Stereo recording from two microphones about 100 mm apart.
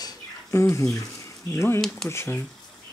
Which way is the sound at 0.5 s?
30° left (ahead or behind).